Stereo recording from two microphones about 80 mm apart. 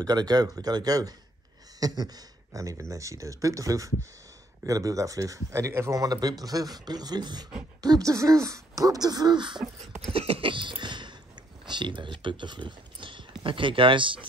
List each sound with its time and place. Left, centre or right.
0.0 s speech: right
7.8 s speech: right
10.4 s a sound: right
11.6 s speech: right